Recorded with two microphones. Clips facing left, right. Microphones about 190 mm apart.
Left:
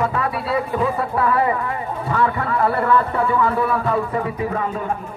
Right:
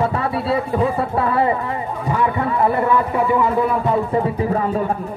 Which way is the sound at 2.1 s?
15° right (ahead or behind).